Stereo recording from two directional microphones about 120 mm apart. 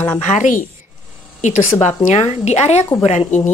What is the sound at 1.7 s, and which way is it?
A woman's voice, 75° left (ahead or behind).